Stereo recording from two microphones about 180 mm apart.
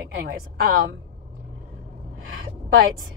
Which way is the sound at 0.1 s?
55° right (ahead or behind).